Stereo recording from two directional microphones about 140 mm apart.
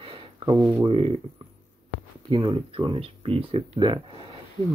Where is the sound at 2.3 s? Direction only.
35° right (ahead or behind).